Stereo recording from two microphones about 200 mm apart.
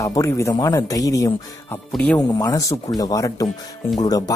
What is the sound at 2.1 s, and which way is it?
Speech, 20° left (ahead or behind).